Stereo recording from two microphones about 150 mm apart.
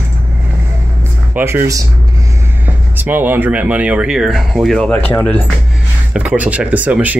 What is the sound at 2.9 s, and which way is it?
Speech, 15° right (ahead or behind).